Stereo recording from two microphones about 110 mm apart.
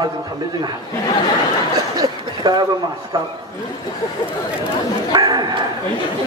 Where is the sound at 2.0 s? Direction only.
40° right (ahead or behind).